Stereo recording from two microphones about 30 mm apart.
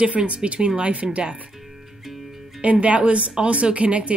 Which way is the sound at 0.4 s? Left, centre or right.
Right.